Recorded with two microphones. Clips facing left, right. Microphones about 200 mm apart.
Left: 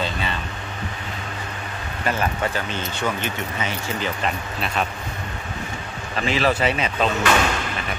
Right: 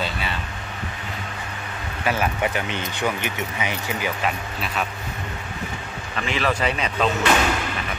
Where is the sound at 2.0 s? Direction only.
10° right (ahead or behind).